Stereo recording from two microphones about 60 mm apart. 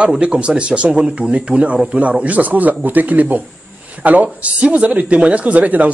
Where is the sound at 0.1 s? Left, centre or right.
Centre.